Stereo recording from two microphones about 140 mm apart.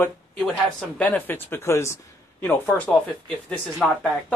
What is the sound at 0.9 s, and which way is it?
A man's voice, 10° left (ahead or behind).